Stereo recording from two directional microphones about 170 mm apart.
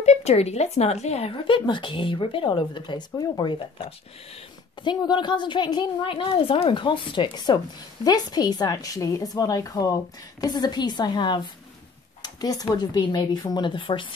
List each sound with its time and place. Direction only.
0.0 s a woman's voice: 40° left (ahead or behind)